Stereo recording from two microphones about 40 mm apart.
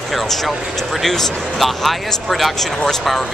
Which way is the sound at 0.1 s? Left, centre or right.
Centre.